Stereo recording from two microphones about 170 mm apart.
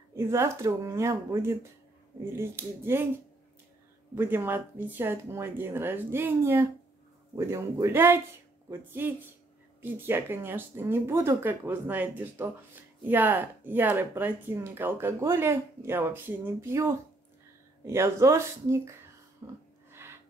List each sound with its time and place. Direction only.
0.1 s speech: 15° right (ahead or behind)
4.1 s speech: 15° right (ahead or behind)
19.4 s a sound: 15° right (ahead or behind)